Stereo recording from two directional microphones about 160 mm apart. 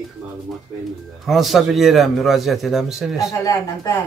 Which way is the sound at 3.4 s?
20° left (ahead or behind).